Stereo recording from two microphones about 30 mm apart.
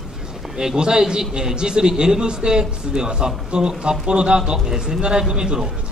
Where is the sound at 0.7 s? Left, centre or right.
Right.